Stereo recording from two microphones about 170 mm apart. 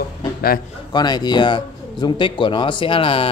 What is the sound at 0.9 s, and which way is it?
Speech, 25° left (ahead or behind).